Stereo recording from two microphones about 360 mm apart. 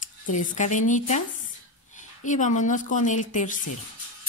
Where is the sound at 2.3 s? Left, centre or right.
Left.